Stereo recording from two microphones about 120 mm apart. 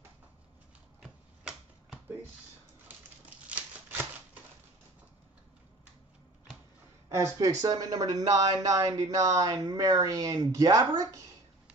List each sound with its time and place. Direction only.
1.0 s finger snapping: 5° right (ahead or behind)
3.4 s a sound: 15° right (ahead or behind)
7.1 s speech: 25° right (ahead or behind)